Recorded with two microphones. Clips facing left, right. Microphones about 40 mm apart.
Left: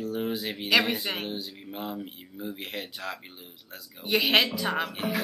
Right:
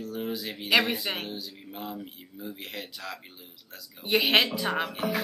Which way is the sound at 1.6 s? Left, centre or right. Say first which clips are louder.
Left 2 dB; centre.